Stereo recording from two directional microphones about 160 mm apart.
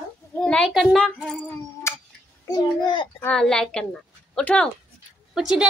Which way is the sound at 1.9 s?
15° left (ahead or behind).